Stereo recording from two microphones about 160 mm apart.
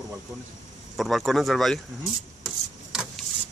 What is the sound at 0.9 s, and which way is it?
Speech, centre (ahead or behind).